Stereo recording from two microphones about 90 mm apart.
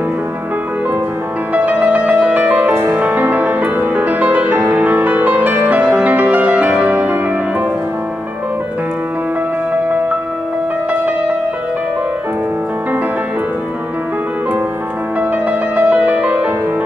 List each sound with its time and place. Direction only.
1.5 s music: 15° right (ahead or behind)
2.7 s music: 30° right (ahead or behind)
3.0 s music: 15° right (ahead or behind)
15.7 s music: 15° right (ahead or behind)